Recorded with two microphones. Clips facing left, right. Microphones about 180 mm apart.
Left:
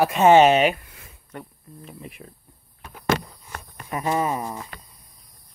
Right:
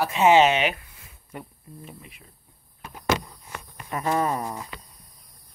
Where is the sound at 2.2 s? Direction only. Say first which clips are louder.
Left 10 dB; 90° left.